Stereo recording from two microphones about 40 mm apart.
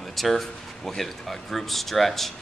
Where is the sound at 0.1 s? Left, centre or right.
Centre.